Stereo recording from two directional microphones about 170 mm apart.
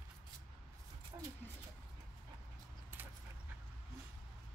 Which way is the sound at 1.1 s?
25° right (ahead or behind).